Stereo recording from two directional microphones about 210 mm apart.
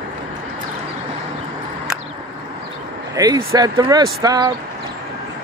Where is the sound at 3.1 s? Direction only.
15° right (ahead or behind).